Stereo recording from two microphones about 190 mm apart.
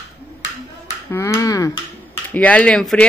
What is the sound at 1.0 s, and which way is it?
Speech, 15° left (ahead or behind).